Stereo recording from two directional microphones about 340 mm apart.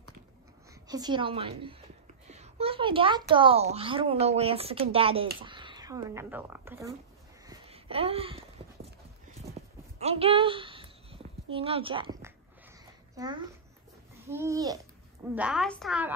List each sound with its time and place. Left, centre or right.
0.8 s speech: centre
7.4 s a sound: centre
9.5 s clip-clop: centre
11.5 s a child's voice: centre